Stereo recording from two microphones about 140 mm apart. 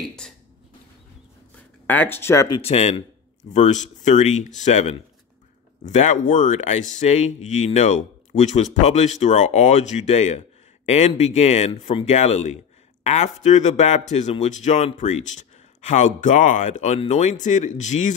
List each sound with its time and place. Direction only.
1.9 s speech: 15° left (ahead or behind)
2.6 s speech: 45° left (ahead or behind)